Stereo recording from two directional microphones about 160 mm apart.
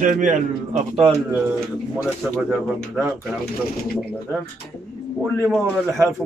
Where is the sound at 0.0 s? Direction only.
55° right (ahead or behind).